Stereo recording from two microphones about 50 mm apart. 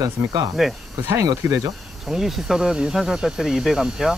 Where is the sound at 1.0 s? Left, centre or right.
Right.